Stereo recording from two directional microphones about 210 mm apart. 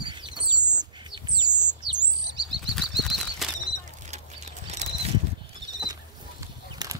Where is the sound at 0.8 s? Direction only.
20° right (ahead or behind).